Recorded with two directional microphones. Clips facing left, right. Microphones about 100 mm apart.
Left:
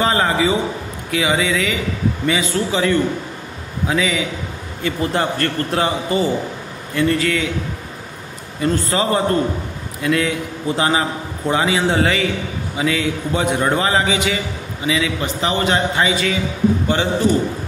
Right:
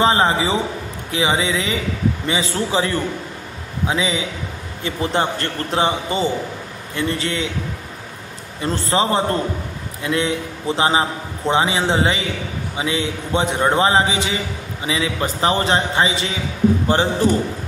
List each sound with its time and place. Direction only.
0.0 s a man's voice: 25° right (ahead or behind)
8.6 s a man's voice: 30° right (ahead or behind)